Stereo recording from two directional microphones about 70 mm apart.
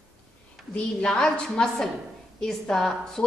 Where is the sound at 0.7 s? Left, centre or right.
Centre.